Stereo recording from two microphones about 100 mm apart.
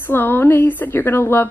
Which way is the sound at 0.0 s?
20° left (ahead or behind).